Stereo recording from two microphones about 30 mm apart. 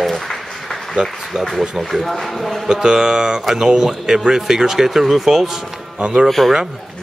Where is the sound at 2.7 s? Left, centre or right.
Right.